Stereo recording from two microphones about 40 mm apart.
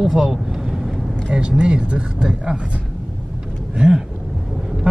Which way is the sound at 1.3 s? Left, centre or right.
Right.